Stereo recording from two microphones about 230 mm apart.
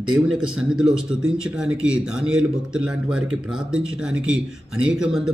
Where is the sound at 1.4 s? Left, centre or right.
Centre.